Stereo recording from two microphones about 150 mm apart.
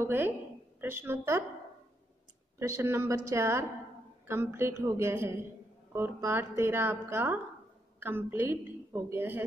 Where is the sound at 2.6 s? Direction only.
20° right (ahead or behind).